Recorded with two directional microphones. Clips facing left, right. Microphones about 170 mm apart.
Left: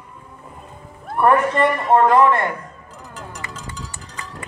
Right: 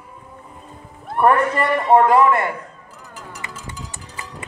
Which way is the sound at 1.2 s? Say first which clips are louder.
Left 1 dB; 5° right (ahead or behind).